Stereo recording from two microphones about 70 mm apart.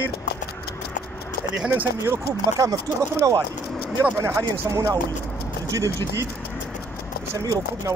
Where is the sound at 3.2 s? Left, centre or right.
Right.